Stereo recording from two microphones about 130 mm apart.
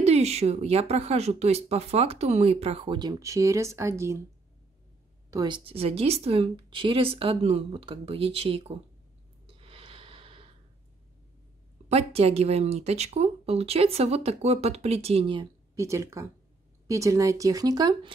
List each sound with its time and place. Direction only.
0.0 s speech: 55° right (ahead or behind)
3.0 s speech: 30° right (ahead or behind)
5.3 s a woman's voice: 30° right (ahead or behind)
5.7 s speech: 50° right (ahead or behind)
9.6 s gasp: 45° right (ahead or behind)
11.9 s speech: 50° right (ahead or behind)
15.3 s speech: 25° right (ahead or behind)